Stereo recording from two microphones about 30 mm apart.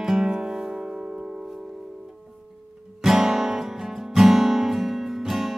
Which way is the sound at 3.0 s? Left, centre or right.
Centre.